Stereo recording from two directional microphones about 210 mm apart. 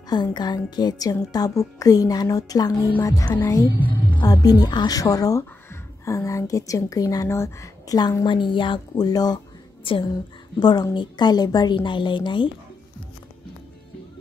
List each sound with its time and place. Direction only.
0.1 s a woman's voice: 20° left (ahead or behind)